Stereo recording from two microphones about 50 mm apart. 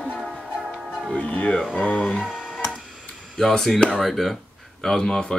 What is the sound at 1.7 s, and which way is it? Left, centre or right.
Speech, left.